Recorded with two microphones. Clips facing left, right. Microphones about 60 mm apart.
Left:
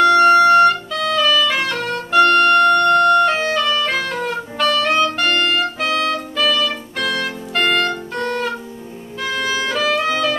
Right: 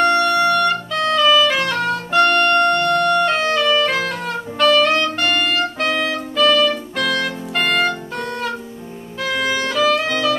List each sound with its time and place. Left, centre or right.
0.2 s music: left
0.9 s music: centre
9.2 s music: centre